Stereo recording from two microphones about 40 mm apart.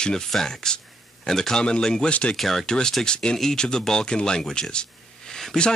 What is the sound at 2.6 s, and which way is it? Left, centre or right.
Speech, centre.